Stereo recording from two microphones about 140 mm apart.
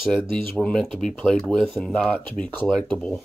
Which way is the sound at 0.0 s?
Centre (ahead or behind).